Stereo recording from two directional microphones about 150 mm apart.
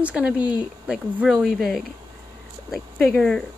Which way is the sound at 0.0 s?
5° right (ahead or behind).